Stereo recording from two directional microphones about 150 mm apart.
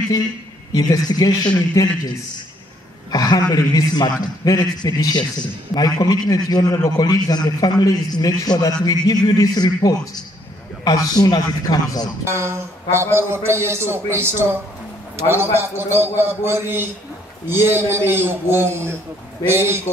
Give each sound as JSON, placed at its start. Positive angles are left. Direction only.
{"t": 0.7, "sound": "a man's voice", "side_deg": 25}
{"t": 3.1, "sound": "a man's voice", "side_deg": 25}
{"t": 12.3, "sound": "a man's voice", "side_deg": -20}